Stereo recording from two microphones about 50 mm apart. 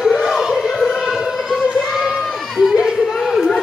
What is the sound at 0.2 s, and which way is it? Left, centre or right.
Music, centre.